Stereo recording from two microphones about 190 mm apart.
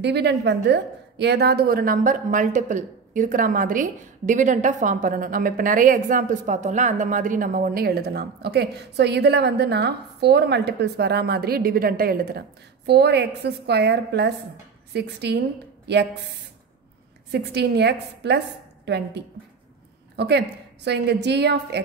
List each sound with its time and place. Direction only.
0.0 s a woman's voice: 60° right (ahead or behind)
17.3 s a woman's voice: 60° right (ahead or behind)